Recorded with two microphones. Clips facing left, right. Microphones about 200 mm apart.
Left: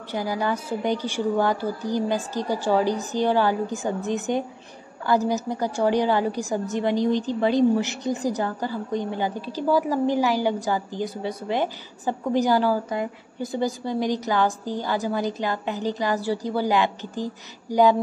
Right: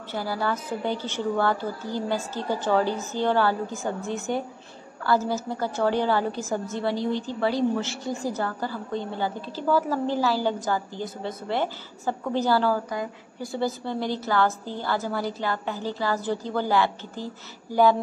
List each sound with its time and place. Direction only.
0.1 s a woman's voice: 15° left (ahead or behind)